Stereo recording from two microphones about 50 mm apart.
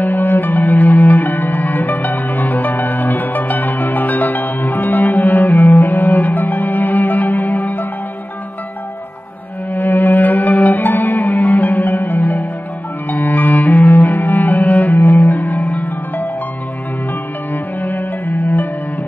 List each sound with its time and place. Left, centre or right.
0.0 s music: left
9.8 s music: left
13.1 s cello: left
15.3 s music: left
17.8 s music: left